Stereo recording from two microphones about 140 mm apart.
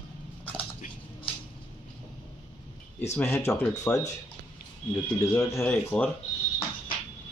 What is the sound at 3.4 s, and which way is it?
Speech, 20° left (ahead or behind).